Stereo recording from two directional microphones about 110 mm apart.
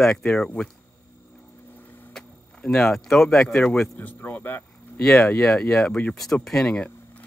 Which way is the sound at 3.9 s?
15° left (ahead or behind).